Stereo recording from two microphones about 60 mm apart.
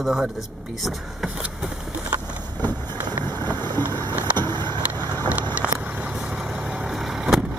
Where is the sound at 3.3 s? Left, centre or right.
Left.